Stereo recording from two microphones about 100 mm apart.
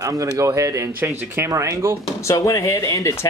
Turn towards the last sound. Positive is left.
turn(degrees=30)  # may be behind; listen again after turning